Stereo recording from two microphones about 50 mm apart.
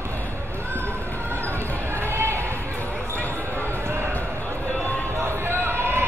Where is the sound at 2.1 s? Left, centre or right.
Right.